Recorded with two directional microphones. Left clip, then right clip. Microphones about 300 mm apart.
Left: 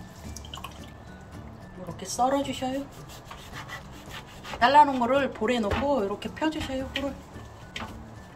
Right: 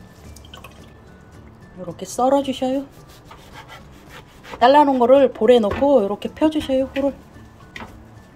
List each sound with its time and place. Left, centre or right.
2.0 s speech: right
4.6 s speech: right